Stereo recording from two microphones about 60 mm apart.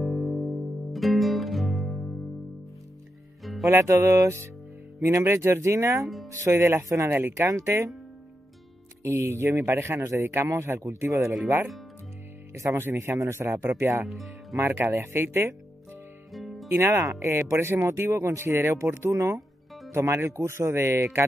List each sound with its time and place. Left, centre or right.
0.0 s music: centre
3.7 s music: right
5.0 s speech: right
7.1 s speech: right
7.3 s speech: right
9.0 s speech: right
12.5 s speech: right
14.0 s speech: centre
14.6 s speech: right
16.3 s music: centre
16.7 s speech: right